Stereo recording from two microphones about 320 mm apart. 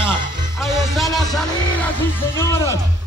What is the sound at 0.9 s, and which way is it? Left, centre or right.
Speech, centre.